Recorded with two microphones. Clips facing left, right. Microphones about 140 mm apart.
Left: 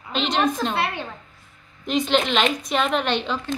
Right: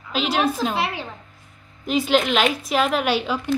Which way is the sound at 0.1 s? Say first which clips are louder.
Even; 5° right (ahead or behind).